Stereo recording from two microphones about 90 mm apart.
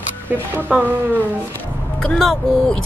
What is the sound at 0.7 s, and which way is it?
Speech, 10° right (ahead or behind).